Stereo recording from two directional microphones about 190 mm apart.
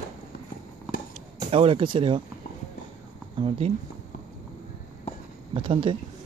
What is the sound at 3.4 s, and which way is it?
Speech, 30° right (ahead or behind).